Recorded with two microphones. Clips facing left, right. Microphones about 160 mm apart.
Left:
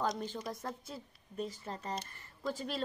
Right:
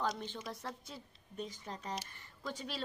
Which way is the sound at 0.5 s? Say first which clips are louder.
Left 3 dB; 10° left (ahead or behind).